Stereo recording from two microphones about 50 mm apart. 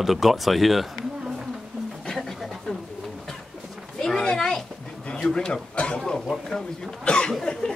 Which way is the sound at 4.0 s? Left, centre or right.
Centre.